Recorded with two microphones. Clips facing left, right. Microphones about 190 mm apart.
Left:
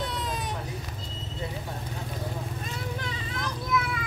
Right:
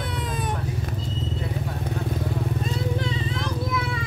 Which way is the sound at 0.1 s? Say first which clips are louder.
Right 4 dB; 55° right (ahead or behind).